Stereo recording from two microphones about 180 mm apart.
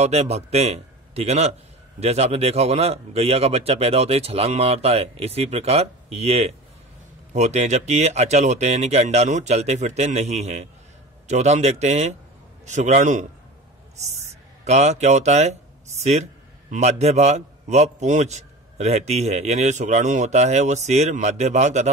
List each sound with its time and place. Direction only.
0.0 s a man's voice: 35° right (ahead or behind)
14.6 s a man's voice: 40° right (ahead or behind)